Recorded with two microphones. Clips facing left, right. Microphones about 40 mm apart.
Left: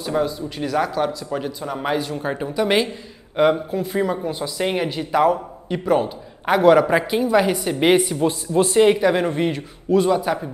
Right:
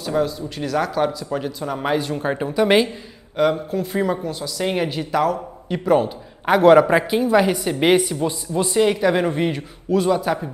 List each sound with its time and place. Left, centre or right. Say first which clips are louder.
0.0 s a man's voice: even; centre
3.3 s a man's voice: left 1 dB; centre
4.2 s speech: left 1 dB; centre
4.7 s a man's voice: left 1 dB; centre
9.0 s a man's voice: even; centre